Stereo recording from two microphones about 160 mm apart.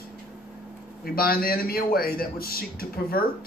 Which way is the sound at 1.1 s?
65° left (ahead or behind).